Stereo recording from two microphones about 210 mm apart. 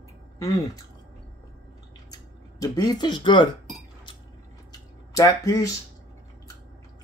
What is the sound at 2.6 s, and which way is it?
Speech, 20° left (ahead or behind).